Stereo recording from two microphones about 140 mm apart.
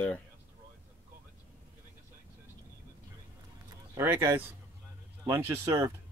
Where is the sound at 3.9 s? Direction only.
20° right (ahead or behind).